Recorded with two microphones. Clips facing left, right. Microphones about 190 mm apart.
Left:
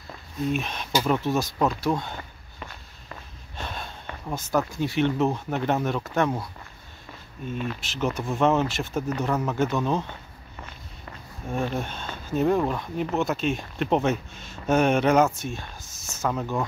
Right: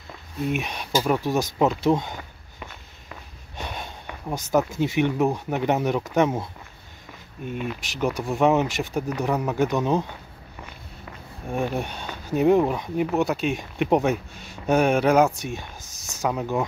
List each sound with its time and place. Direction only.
0.5 s speech: 15° right (ahead or behind)
11.5 s speech: 15° right (ahead or behind)